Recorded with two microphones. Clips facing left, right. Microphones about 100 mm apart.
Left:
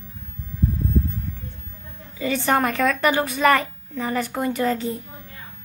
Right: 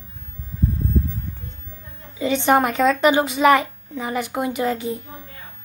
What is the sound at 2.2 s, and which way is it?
A child's voice, 20° right (ahead or behind).